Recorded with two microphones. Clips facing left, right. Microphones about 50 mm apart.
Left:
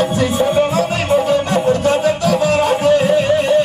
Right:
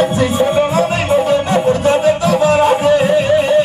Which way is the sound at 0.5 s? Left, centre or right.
Centre.